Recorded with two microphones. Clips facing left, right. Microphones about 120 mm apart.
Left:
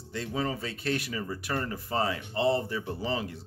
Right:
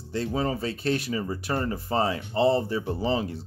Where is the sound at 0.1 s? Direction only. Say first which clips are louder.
Right 5 dB; 35° right (ahead or behind).